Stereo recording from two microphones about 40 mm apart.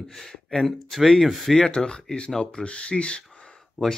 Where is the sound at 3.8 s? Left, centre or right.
Centre.